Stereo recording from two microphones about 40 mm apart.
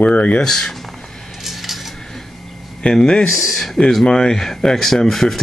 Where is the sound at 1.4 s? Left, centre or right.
Centre.